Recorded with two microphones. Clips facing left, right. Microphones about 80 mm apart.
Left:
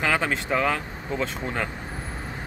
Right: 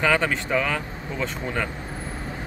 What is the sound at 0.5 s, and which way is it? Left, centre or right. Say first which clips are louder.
Speech: left 2 dB; left.